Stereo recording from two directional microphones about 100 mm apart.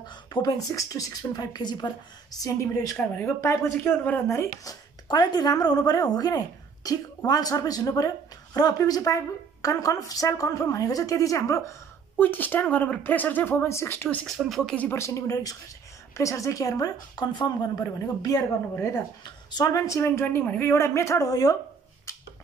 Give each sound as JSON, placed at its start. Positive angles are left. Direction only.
{"t": 0.0, "sound": "a sound", "side_deg": 45}
{"t": 0.7, "sound": "speech", "side_deg": 35}
{"t": 2.3, "sound": "speech", "side_deg": 35}
{"t": 3.0, "sound": "a woman's voice", "side_deg": 15}
{"t": 3.3, "sound": "speech", "side_deg": 30}
{"t": 5.0, "sound": "speech", "side_deg": 45}
{"t": 12.2, "sound": "a woman's voice", "side_deg": 20}
{"t": 14.2, "sound": "speech", "side_deg": 0}
{"t": 14.8, "sound": "speech", "side_deg": 25}
{"t": 19.5, "sound": "speech", "side_deg": 35}